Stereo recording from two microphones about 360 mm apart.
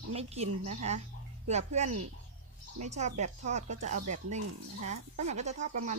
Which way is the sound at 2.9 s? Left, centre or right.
Centre.